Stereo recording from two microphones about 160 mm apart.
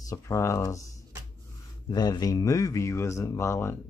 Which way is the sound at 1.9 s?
25° left (ahead or behind).